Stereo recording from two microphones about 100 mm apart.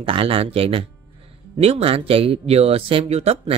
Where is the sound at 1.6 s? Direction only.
85° right.